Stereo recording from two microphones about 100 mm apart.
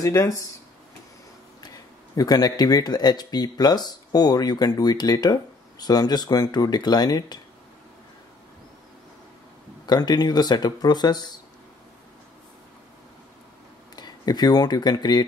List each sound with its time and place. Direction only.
0.0 s speech: 30° left (ahead or behind)
1.6 s speech: 40° left (ahead or behind)
9.8 s speech: 45° left (ahead or behind)
13.9 s speech: 45° left (ahead or behind)